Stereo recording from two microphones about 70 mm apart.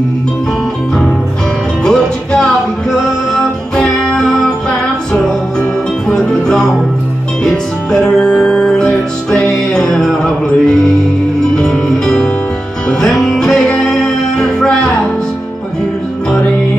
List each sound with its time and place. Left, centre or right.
1.9 s music: centre